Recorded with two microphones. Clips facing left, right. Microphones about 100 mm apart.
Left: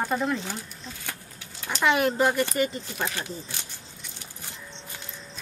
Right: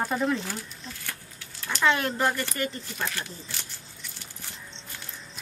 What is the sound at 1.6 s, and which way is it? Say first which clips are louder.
Speech: left 2 dB; 15° left (ahead or behind).